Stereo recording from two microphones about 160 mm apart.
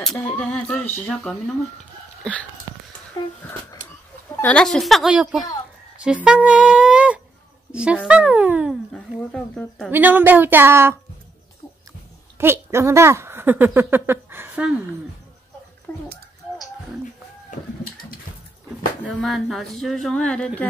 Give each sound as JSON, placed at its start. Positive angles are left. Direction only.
{"t": 0.2, "sound": "speech", "side_deg": 10}
{"t": 2.7, "sound": "a sound", "side_deg": -25}
{"t": 3.2, "sound": "speech", "side_deg": 25}
{"t": 4.4, "sound": "speech", "side_deg": 5}
{"t": 8.1, "sound": "music", "side_deg": -10}
{"t": 9.1, "sound": "speech", "side_deg": 0}
{"t": 9.8, "sound": "speech", "side_deg": -10}
{"t": 12.4, "sound": "speech", "side_deg": -15}
{"t": 15.9, "sound": "speech", "side_deg": 15}
{"t": 19.0, "sound": "speech", "side_deg": 0}